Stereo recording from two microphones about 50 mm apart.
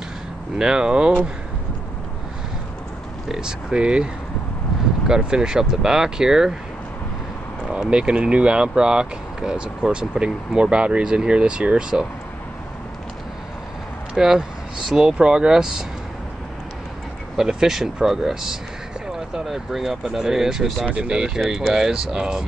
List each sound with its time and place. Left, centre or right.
0.6 s speech: centre
3.3 s speech: centre
7.8 s speech: centre
14.1 s speech: centre
17.4 s speech: centre
20.8 s speech: right
21.5 s speech: centre